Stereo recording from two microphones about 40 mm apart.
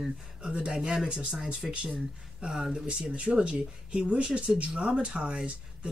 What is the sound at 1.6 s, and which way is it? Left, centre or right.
Speech, centre.